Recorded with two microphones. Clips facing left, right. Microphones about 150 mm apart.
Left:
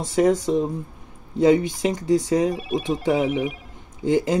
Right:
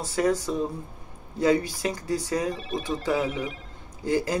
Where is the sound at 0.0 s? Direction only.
20° left (ahead or behind).